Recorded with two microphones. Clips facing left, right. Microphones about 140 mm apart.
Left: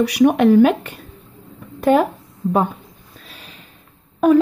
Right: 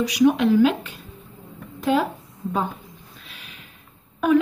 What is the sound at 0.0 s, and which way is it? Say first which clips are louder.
Speech: left 4 dB; 60° left (ahead or behind).